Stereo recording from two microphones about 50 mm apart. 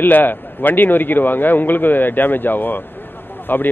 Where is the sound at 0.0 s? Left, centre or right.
Left.